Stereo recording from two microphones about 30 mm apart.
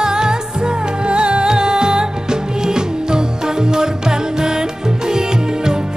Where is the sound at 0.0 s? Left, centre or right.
Right.